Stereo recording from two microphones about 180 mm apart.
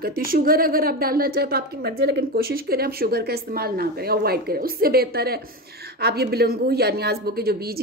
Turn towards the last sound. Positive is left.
turn(degrees=-60)  # may be behind; listen again after turning